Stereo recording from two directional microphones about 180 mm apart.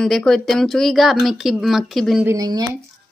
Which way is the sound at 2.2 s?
20° right (ahead or behind).